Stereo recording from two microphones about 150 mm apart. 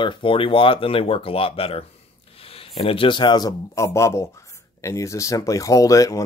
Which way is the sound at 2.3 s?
40° left (ahead or behind).